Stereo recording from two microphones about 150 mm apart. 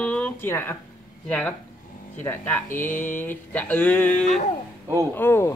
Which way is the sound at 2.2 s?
15° left (ahead or behind).